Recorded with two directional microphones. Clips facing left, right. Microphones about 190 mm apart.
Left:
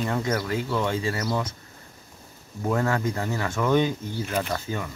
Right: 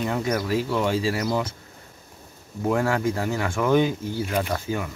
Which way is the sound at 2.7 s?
10° right (ahead or behind).